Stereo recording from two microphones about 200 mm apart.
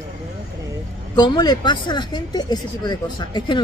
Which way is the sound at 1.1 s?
20° left (ahead or behind).